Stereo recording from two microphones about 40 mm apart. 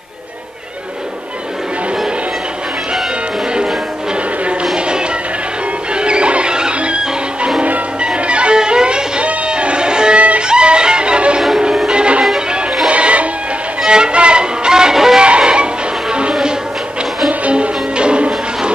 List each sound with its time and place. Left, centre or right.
4.7 s music: right
10.1 s music: right
10.4 s music: right
13.8 s music: right
15.1 s music: right